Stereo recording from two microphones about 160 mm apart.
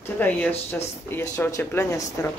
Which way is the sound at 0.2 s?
10° left (ahead or behind).